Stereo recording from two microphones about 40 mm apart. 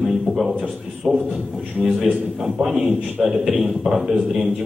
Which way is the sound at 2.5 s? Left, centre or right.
Centre.